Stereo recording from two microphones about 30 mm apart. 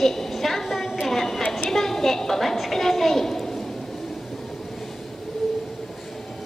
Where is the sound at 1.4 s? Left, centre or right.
Left.